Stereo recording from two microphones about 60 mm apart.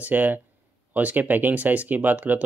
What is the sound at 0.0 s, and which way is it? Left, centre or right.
Speech, right.